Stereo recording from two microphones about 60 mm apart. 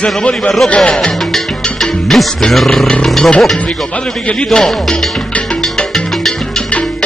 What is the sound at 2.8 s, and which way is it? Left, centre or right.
A man's voice, centre.